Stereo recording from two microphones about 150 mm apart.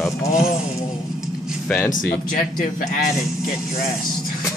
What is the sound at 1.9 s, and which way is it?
Speech, 65° left (ahead or behind).